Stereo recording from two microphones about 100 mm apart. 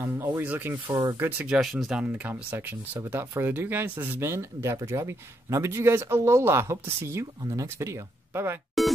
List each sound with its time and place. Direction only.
0.0 s speech: 25° right (ahead or behind)
0.9 s speech: 35° right (ahead or behind)
1.5 s speech: centre (ahead or behind); by 8.5 s 25° right (ahead or behind)
8.8 s music: centre (ahead or behind)